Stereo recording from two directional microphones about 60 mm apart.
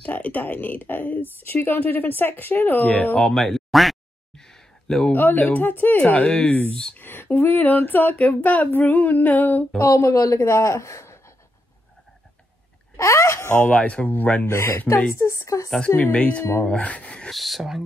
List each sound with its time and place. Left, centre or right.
0.0 s a woman's voice: left
3.2 s speech: centre
4.4 s a sound: centre
5.1 s a woman's voice: left; by 7.0 s centre
7.0 s a woman's voice: left
9.8 s a woman's voice: left
12.9 s a sound: left
13.7 s speech: centre
14.4 s speech: left
15.1 s a sound: left
16.0 s speech: left
17.3 s speech: centre